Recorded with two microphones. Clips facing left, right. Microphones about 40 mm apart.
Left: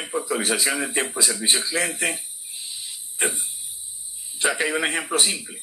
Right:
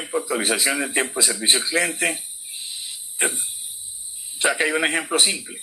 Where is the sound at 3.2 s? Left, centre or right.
Centre.